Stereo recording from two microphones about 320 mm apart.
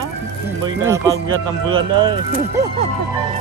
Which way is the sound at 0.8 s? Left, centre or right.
Centre.